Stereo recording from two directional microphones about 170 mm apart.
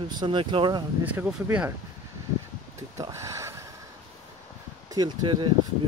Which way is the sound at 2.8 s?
20° right (ahead or behind).